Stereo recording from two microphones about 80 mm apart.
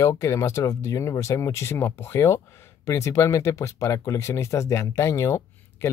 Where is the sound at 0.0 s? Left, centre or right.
Left.